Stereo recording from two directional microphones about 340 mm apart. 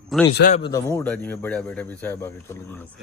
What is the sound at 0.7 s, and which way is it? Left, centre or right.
A man's voice, centre.